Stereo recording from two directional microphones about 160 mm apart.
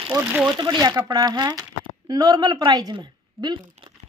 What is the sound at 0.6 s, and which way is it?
Speech, 25° right (ahead or behind).